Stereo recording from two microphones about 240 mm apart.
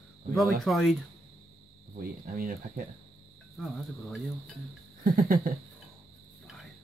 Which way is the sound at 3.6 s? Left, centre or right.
Centre.